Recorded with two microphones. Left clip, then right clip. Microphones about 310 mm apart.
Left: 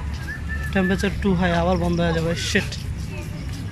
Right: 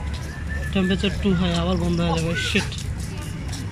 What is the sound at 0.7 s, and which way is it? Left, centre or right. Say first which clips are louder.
Speech: left 1 dB; centre.